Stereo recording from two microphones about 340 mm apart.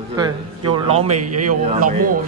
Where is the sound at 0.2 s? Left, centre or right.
Centre.